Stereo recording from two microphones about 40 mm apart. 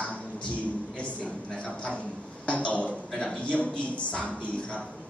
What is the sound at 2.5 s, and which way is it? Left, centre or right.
A man's voice, left.